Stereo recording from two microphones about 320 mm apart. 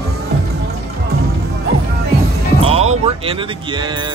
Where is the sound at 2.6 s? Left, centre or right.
Centre.